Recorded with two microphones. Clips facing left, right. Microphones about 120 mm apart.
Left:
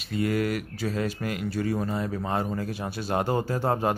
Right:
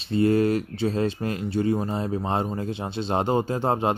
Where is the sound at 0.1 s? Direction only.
30° right (ahead or behind).